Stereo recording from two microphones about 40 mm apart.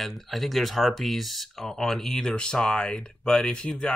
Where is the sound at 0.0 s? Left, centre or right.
Centre.